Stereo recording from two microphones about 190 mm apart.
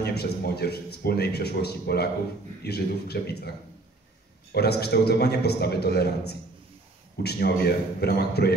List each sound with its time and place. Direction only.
0.0 s speech: 55° left (ahead or behind)
4.6 s speech: 60° left (ahead or behind)